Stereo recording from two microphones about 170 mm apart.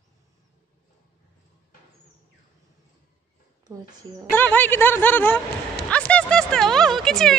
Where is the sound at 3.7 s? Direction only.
15° right (ahead or behind).